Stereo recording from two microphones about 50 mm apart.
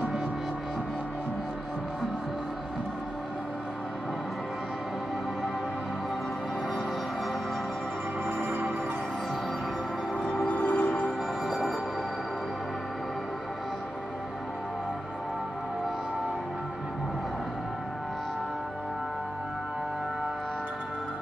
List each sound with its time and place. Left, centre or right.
8.3 s music: right
10.5 s music: left